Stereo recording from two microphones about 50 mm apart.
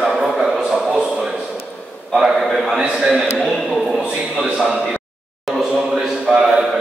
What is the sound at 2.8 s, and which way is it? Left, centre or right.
Speech, centre.